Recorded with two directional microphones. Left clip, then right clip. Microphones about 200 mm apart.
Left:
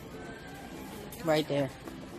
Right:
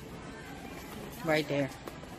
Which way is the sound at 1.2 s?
10° left (ahead or behind).